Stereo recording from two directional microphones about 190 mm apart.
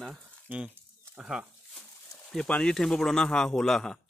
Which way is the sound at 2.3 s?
5° left (ahead or behind).